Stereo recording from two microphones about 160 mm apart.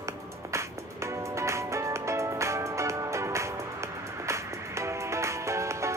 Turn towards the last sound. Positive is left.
turn(degrees=-20)  # may be behind; listen again after turning